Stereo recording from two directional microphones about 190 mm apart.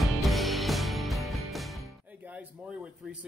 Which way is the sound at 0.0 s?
Centre (ahead or behind).